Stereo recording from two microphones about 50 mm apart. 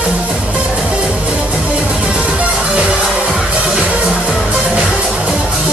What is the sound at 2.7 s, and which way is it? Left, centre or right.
Music, right.